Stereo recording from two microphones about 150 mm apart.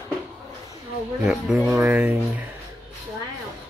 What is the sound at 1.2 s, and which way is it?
Speech, 5° right (ahead or behind).